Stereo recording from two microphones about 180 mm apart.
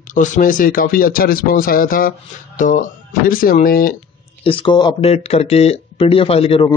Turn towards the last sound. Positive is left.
turn(degrees=30)  # may be behind; listen again after turning